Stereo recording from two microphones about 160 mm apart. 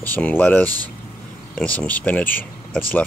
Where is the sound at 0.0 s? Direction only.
10° left (ahead or behind).